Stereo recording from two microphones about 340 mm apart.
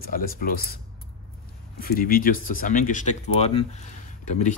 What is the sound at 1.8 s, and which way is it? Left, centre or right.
Speech, left.